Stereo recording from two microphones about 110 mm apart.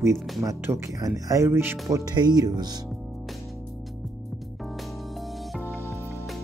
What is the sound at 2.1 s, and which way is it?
Speech, 40° right (ahead or behind).